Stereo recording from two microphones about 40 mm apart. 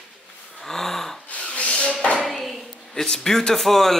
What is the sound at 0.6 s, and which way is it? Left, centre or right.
Gasp, centre.